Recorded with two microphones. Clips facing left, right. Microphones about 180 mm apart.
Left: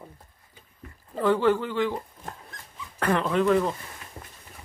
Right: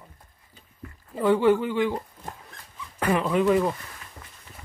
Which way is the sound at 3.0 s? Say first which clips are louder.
Right 1 dB; 10° right (ahead or behind).